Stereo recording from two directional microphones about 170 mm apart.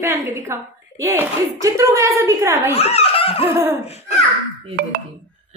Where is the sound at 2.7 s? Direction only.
35° left (ahead or behind).